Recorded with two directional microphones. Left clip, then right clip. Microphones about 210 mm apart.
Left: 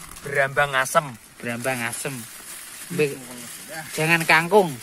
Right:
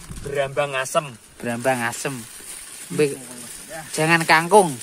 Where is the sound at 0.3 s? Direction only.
25° right (ahead or behind).